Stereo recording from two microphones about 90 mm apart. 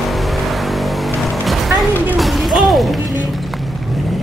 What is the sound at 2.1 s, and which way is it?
Music, centre (ahead or behind).